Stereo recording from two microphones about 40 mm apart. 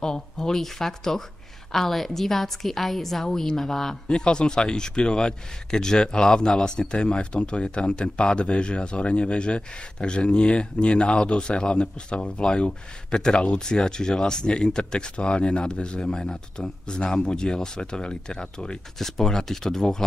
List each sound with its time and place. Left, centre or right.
0.0 s a woman's voice: centre
4.1 s a man's voice: left
18.9 s a woman's voice: centre